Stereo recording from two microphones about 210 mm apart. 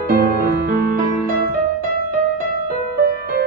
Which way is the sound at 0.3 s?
45° right (ahead or behind).